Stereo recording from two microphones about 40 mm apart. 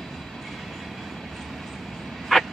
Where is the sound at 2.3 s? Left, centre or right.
Centre.